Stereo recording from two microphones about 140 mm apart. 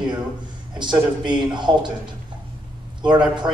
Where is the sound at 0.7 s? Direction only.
35° right (ahead or behind).